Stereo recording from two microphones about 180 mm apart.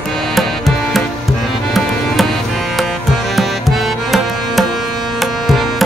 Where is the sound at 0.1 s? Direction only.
Centre (ahead or behind).